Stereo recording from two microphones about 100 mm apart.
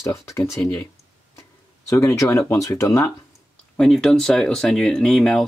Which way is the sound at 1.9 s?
30° left (ahead or behind).